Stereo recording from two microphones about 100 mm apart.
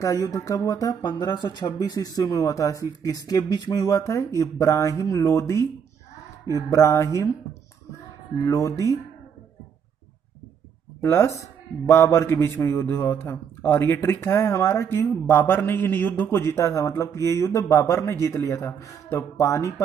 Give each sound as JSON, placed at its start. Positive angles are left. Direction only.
{"t": 0.0, "sound": "speech", "side_deg": 35}
{"t": 1.1, "sound": "speech", "side_deg": 50}
{"t": 8.5, "sound": "speech", "side_deg": 30}
{"t": 11.0, "sound": "a man's voice", "side_deg": 30}